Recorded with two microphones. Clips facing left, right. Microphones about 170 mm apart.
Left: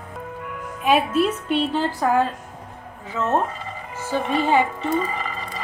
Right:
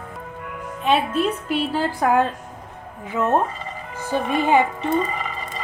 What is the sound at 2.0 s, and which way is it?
Speech, 15° right (ahead or behind).